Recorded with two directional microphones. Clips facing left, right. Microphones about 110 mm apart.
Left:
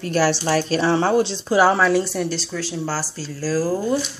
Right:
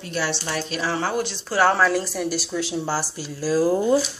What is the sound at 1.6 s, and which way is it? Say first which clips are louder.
Speech: left 1 dB; centre (ahead or behind).